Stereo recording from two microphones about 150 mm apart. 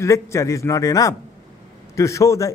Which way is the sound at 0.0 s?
20° left (ahead or behind).